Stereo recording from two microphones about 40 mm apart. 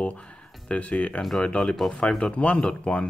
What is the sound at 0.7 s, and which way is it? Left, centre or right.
Speech, left.